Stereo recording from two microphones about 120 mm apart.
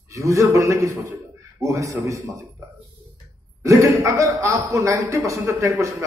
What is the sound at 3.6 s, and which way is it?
A man's voice, 25° right (ahead or behind).